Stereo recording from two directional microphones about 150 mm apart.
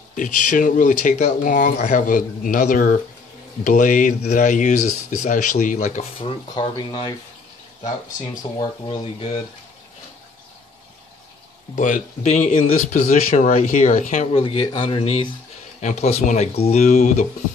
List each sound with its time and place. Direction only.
0.1 s speech: 60° left (ahead or behind)
6.6 s speech: 30° left (ahead or behind)
8.5 s speech: 35° left (ahead or behind)
11.7 s speech: 55° left (ahead or behind)
14.3 s speech: 35° left (ahead or behind)
15.8 s speech: 50° left (ahead or behind)